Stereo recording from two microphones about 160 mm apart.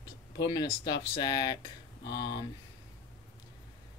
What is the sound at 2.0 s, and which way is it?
Speech, 90° left.